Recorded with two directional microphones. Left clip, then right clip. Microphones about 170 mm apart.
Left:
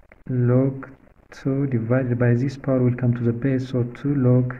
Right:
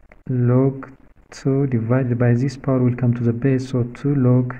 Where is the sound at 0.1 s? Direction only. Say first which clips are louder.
Right 1 dB; 25° right (ahead or behind).